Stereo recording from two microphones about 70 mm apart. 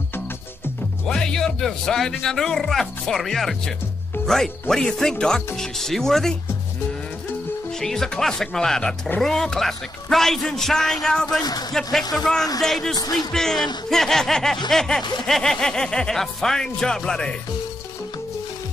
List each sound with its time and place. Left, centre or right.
1.0 s speech: centre
7.8 s speech: centre